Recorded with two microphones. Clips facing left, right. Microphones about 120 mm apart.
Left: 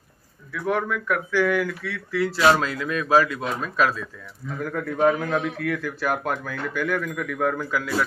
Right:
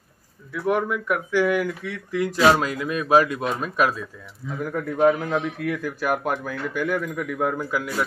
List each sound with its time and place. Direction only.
0.5 s speech: 20° right (ahead or behind)